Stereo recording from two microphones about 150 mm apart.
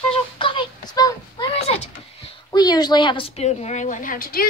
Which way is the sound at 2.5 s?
30° left (ahead or behind).